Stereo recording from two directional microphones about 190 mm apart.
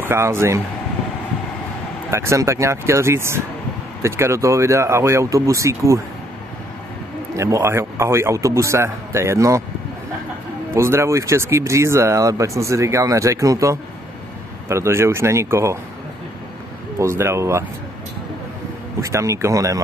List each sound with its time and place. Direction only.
0.0 s speech: 10° right (ahead or behind)
2.0 s speech: 15° right (ahead or behind)
7.3 s speech: 15° right (ahead or behind)
10.7 s speech: 15° right (ahead or behind)
17.0 s speech: 15° right (ahead or behind)
18.9 s speech: 15° right (ahead or behind)